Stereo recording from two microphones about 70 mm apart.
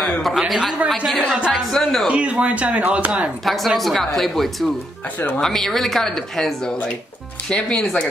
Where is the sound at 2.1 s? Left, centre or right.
Centre.